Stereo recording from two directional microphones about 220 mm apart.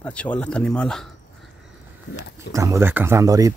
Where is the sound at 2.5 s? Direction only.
15° right (ahead or behind).